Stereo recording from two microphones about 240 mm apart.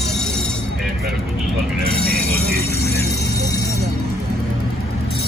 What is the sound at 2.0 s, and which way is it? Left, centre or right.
Music, right.